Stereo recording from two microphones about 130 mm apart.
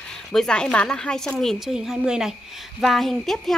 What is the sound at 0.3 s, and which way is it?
A woman's voice, 5° left (ahead or behind).